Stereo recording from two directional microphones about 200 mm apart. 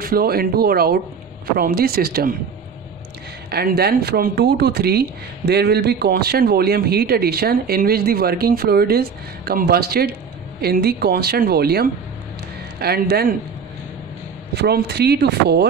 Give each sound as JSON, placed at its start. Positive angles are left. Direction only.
{"t": 0.0, "sound": "speech", "side_deg": -50}
{"t": 3.4, "sound": "speech", "side_deg": -50}
{"t": 14.5, "sound": "speech", "side_deg": -55}